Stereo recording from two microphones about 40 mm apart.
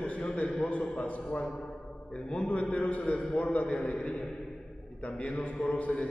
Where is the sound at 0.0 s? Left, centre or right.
Left.